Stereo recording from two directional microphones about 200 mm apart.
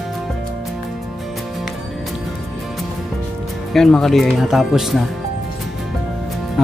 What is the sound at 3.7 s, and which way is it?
Speech, centre (ahead or behind).